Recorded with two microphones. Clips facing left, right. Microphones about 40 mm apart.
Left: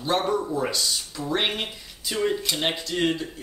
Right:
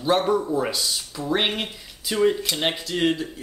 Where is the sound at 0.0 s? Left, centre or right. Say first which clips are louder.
Right 3 dB; centre.